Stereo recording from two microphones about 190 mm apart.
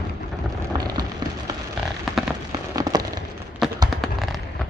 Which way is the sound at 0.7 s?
20° right (ahead or behind).